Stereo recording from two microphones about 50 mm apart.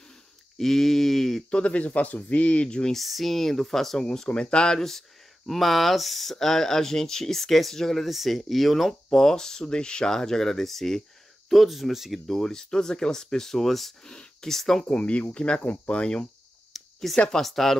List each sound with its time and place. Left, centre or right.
0.6 s a sound: centre
1.5 s speech: left
2.9 s speech: centre
4.7 s speech: centre
12.4 s speech: centre
15.0 s speech: left
16.7 s a sound: centre
17.3 s speech: centre